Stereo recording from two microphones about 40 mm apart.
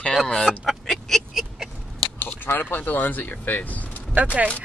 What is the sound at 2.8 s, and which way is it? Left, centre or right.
Speech, left.